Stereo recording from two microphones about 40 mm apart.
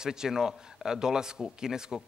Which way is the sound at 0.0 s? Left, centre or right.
Centre.